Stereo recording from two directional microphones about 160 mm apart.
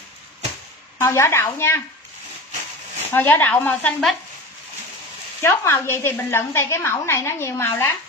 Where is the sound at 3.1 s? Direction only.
10° left (ahead or behind).